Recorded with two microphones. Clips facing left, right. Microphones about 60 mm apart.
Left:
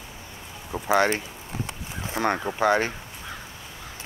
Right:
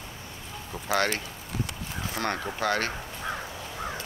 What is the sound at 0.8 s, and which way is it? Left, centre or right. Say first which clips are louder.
Speech: left 5 dB; centre.